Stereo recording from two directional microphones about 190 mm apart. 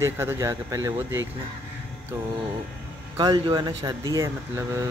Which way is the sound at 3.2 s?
20° right (ahead or behind).